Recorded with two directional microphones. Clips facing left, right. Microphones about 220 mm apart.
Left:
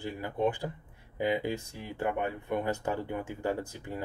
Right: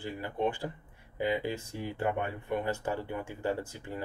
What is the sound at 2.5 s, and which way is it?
Speech, 15° left (ahead or behind).